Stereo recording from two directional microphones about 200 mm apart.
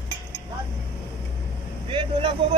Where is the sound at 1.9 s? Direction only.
25° right (ahead or behind).